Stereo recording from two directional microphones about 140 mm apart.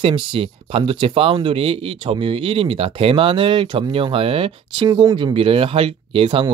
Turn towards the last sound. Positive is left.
turn(degrees=-40)  # may be behind; listen again after turning